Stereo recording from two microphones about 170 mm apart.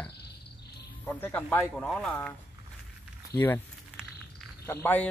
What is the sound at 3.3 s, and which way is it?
Speech, 10° left (ahead or behind).